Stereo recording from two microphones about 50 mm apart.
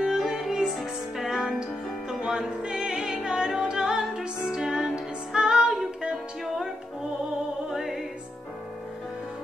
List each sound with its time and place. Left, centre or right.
0.0 s music: centre
7.7 s music: centre